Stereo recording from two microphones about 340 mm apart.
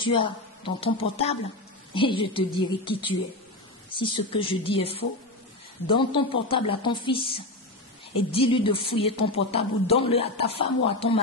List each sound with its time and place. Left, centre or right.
0.0 s speech: centre